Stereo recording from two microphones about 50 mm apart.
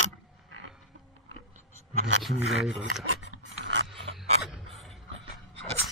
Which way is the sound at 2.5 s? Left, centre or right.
Centre.